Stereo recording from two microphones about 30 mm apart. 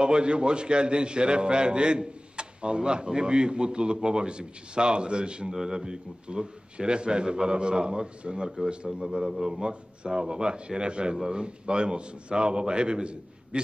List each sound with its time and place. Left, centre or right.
0.0 s a man's voice: right
5.5 s a man's voice: centre